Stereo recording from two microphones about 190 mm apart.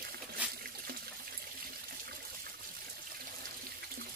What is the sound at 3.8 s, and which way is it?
Water, 50° right (ahead or behind).